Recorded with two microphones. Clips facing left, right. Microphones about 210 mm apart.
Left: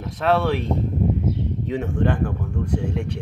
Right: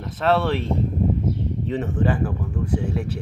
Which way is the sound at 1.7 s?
Centre (ahead or behind).